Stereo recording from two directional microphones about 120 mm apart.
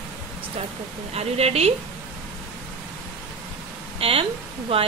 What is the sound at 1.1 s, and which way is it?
Speech, 60° right (ahead or behind).